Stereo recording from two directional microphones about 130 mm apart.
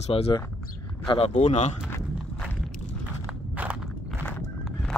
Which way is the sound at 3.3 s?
10° right (ahead or behind).